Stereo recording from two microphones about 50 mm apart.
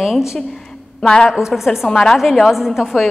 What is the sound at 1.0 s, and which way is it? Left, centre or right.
Speech, centre.